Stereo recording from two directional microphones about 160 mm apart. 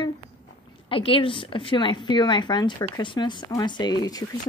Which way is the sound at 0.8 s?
35° left (ahead or behind).